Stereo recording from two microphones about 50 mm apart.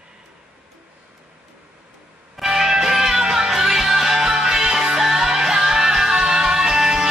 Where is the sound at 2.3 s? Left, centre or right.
Centre.